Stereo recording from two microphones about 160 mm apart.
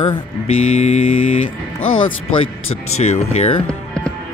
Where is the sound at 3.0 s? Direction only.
40° left (ahead or behind).